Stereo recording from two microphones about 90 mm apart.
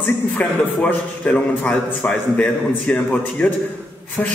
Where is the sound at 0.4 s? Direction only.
15° left (ahead or behind).